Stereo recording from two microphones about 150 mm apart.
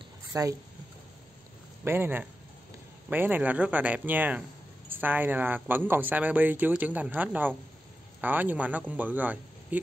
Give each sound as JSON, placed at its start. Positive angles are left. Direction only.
{"t": 0.3, "sound": "speech", "side_deg": -20}
{"t": 1.9, "sound": "a man's voice", "side_deg": -15}